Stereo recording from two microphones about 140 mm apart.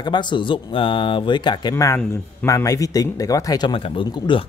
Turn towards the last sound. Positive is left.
turn(degrees=35)  # may be behind; listen again after turning